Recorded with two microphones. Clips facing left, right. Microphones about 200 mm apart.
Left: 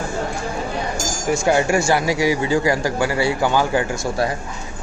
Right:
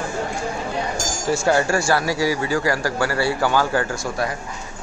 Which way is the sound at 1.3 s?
15° left (ahead or behind).